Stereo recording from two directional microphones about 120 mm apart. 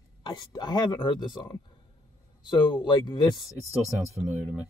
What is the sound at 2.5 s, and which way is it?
Speech, 40° left (ahead or behind).